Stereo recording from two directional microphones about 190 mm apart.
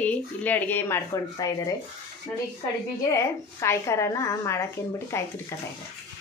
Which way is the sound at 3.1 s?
15° left (ahead or behind).